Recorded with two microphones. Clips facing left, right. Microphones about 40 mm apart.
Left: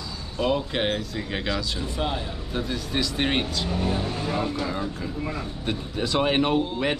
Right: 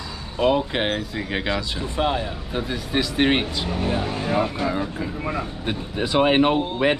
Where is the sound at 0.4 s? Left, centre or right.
Centre.